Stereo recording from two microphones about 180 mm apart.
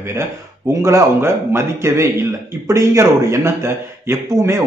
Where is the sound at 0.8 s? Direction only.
15° right (ahead or behind).